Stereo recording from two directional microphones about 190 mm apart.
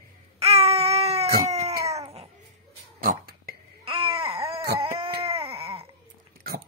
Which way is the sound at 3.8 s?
25° right (ahead or behind).